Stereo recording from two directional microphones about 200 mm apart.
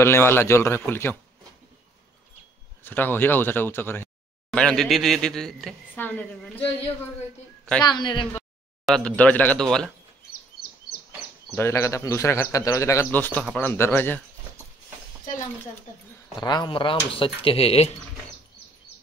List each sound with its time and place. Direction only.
0.0 s speech: 10° left (ahead or behind)
2.8 s speech: 10° left (ahead or behind)
7.8 s speech: 20° left (ahead or behind)
8.8 s speech: 5° left (ahead or behind)
11.5 s speech: 15° left (ahead or behind)
16.3 s speech: 20° left (ahead or behind)